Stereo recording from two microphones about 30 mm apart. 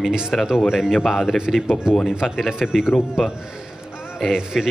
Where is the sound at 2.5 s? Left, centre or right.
Right.